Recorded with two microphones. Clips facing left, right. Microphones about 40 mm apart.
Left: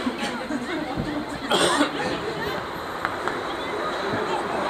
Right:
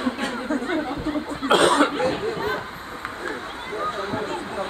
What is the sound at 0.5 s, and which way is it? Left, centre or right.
Chatter, right.